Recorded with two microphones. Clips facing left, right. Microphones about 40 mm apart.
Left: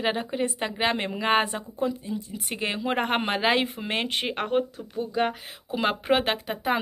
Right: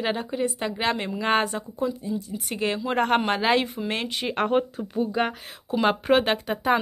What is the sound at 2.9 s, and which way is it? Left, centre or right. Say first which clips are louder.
Speech: right 6 dB; centre.